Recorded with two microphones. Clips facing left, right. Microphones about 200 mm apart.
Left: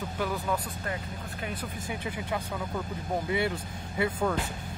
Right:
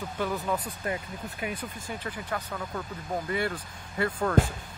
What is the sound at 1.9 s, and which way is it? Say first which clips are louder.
Speech: left 1 dB; 10° left (ahead or behind).